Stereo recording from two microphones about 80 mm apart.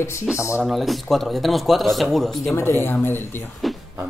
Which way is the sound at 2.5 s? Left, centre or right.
Left.